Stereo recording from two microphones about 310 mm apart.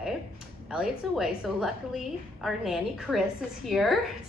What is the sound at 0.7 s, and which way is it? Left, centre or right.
A woman's voice, centre.